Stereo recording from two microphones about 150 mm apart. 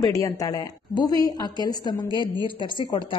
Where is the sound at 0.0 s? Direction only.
25° left (ahead or behind).